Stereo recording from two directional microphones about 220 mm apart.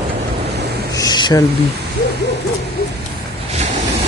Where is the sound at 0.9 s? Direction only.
20° left (ahead or behind).